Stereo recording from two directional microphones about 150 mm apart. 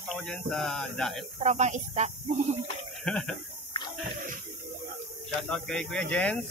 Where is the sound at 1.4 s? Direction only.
50° right (ahead or behind).